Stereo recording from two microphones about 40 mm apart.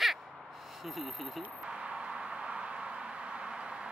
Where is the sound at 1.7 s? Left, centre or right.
Right.